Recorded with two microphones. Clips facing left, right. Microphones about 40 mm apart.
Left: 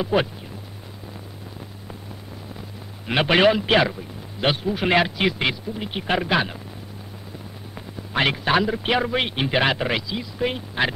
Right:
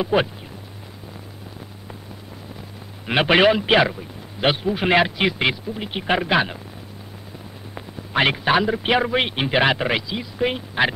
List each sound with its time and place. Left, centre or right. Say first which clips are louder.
0.0 s a man's voice: right 2 dB; centre
3.1 s a man's voice: right 2 dB; centre
7.7 s a man's voice: right 3 dB; centre